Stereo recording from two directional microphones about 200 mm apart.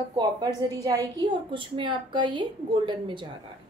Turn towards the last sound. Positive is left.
turn(degrees=-25)  # may be behind; listen again after turning